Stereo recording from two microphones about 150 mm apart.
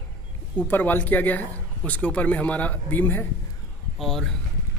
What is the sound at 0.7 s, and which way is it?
Speech, 10° left (ahead or behind).